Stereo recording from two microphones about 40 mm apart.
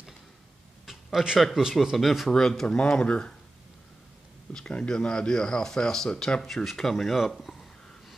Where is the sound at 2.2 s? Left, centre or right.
Centre.